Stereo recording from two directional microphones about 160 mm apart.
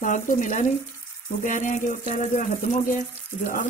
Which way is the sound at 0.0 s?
55° left (ahead or behind).